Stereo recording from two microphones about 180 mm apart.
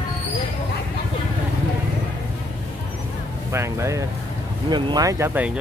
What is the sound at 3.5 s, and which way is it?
Speech, 15° right (ahead or behind).